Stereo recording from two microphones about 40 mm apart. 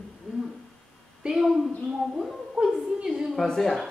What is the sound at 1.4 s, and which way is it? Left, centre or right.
Speech, centre.